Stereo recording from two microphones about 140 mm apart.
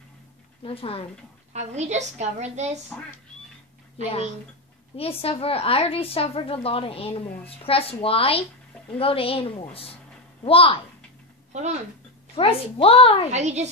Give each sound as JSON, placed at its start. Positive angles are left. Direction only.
{"t": 0.7, "sound": "a woman's voice", "side_deg": 45}
{"t": 1.5, "sound": "a woman's voice", "side_deg": -55}
{"t": 4.9, "sound": "a woman's voice", "side_deg": 45}
{"t": 12.4, "sound": "a woman's voice", "side_deg": 40}
{"t": 13.3, "sound": "a woman's voice", "side_deg": -55}